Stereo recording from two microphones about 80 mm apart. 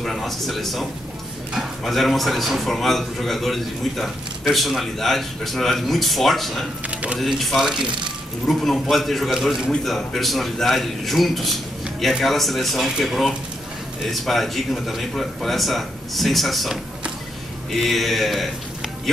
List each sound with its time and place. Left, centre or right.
0.0 s speech: centre
6.9 s a sound: centre
7.2 s speech: centre